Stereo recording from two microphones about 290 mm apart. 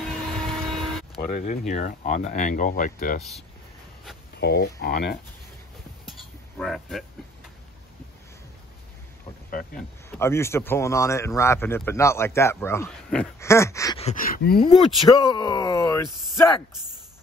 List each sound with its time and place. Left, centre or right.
0.4 s vehicle: centre
1.1 s speech: left
4.4 s speech: left
6.6 s speech: centre
9.5 s speech: left
10.1 s speech: centre; by 14.6 s left
14.6 s speech: centre